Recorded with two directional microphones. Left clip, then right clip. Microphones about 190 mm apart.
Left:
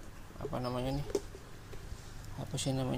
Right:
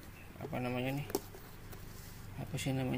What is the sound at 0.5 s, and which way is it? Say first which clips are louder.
Speech: left 1 dB; 20° left (ahead or behind).